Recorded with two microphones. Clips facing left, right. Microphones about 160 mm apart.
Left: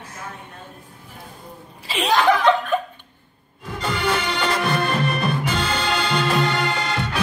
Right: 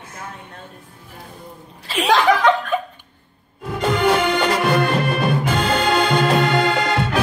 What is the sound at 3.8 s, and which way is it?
Music, 45° right (ahead or behind).